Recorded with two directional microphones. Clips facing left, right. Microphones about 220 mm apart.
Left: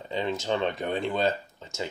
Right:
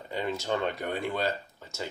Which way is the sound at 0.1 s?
20° left (ahead or behind).